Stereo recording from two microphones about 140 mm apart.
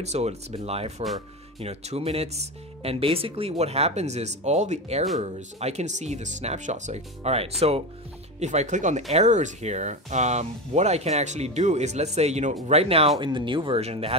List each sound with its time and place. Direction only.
0.0 s speech: 50° right (ahead or behind)
13.2 s speech: 35° right (ahead or behind)